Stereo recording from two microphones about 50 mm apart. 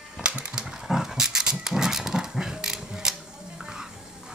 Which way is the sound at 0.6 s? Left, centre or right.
Centre.